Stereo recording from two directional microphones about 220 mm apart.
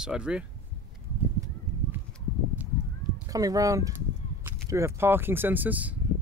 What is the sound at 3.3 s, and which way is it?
Speech, 15° right (ahead or behind).